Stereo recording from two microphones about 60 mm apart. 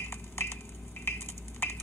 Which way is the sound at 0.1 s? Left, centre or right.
Left.